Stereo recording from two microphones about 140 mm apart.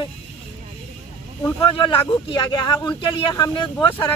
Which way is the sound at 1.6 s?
35° left (ahead or behind).